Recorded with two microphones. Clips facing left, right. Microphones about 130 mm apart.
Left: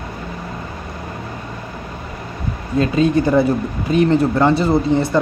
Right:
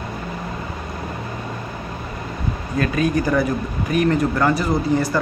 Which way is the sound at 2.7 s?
25° left (ahead or behind).